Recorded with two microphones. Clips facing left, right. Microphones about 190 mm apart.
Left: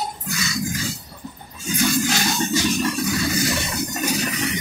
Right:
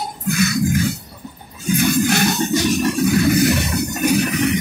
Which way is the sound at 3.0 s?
60° right (ahead or behind).